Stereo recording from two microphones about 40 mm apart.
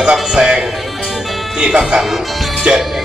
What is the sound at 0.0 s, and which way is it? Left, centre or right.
Music, centre.